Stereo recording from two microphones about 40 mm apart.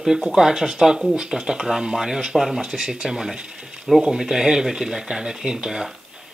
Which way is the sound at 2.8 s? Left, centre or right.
Centre.